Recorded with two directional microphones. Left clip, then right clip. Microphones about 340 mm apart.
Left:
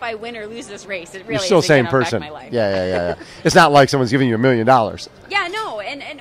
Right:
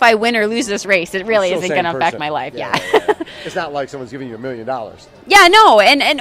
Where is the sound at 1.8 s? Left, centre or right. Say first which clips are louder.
Right 2 dB; right.